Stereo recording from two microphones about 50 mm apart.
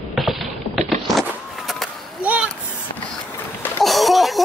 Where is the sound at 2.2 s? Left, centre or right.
Right.